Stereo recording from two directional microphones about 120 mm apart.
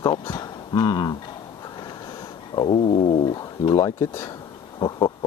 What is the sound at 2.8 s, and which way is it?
Cat, 55° left (ahead or behind).